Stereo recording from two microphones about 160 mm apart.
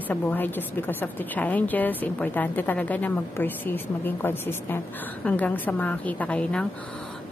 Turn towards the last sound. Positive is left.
turn(degrees=5)  # may be behind; listen again after turning